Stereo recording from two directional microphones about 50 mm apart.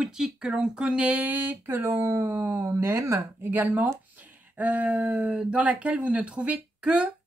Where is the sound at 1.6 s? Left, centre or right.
Right.